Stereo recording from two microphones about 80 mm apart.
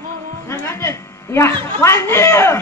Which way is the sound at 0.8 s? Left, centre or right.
Left.